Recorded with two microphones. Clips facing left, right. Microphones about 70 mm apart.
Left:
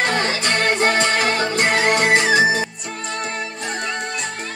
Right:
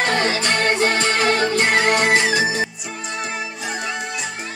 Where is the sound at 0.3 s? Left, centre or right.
Left.